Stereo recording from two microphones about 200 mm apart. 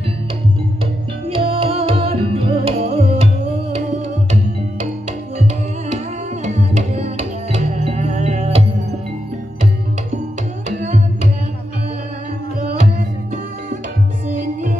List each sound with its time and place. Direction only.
1.2 s music: 25° right (ahead or behind)
6.4 s music: 35° right (ahead or behind)
10.8 s music: 35° right (ahead or behind)